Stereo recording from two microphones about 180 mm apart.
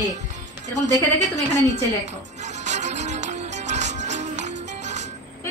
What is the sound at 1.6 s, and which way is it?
Music, 40° right (ahead or behind).